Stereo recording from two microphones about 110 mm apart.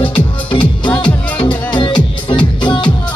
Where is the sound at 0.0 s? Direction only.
50° left (ahead or behind).